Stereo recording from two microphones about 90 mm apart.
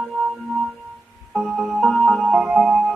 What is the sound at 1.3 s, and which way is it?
Music, centre (ahead or behind).